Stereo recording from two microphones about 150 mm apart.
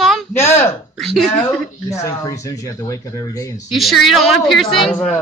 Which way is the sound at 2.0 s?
20° left (ahead or behind).